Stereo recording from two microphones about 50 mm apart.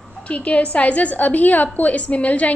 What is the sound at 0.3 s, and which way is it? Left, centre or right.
A woman's voice, left.